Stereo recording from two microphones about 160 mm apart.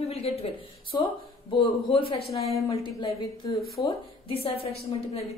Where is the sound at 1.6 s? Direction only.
35° left (ahead or behind).